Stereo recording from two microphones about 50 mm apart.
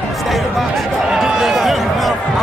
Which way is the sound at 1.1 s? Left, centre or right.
Centre.